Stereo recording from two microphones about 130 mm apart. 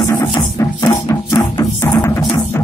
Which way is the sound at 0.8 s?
30° left (ahead or behind).